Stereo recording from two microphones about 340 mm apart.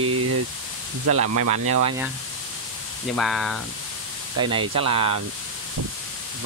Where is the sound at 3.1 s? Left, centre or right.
Centre.